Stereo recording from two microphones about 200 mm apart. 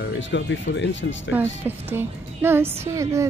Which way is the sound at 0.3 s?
65° left (ahead or behind).